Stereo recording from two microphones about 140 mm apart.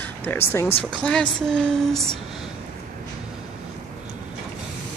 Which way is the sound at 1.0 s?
5° left (ahead or behind).